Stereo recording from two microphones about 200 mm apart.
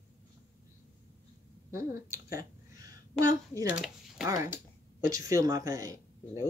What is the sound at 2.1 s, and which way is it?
Speech, 15° right (ahead or behind).